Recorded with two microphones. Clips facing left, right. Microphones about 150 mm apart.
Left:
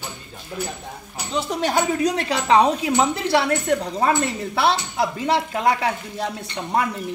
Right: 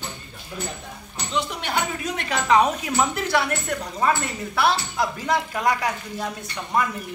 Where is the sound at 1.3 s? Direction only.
40° left (ahead or behind).